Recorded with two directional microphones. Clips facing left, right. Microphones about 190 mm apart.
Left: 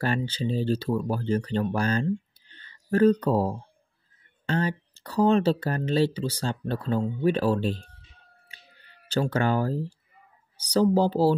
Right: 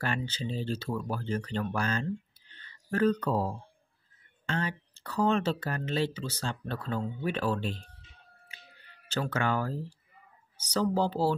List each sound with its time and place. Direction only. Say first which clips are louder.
0.0 s speech: left 6 dB; 35° left (ahead or behind)
9.1 s speech: left 6 dB; 35° left (ahead or behind)